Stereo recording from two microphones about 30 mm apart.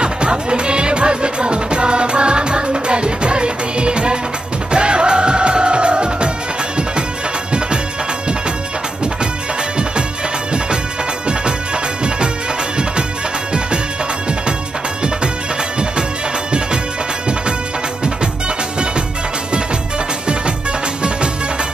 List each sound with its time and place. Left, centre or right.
0.0 s music: right
11.2 s music: right